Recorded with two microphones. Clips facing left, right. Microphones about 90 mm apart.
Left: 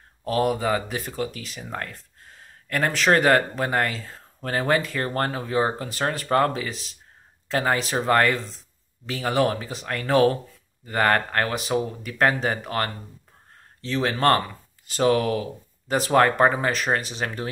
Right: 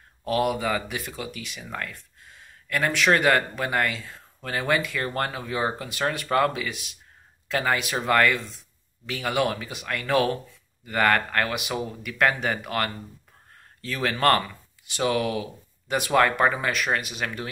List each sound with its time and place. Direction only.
0.2 s speech: 35° left (ahead or behind)